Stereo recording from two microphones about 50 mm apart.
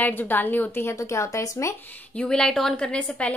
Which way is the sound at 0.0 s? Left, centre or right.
Left.